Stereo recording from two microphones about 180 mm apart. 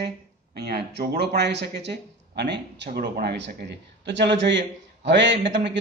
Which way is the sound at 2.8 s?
55° right (ahead or behind).